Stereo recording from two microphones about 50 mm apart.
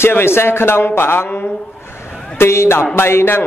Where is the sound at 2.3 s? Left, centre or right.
Left.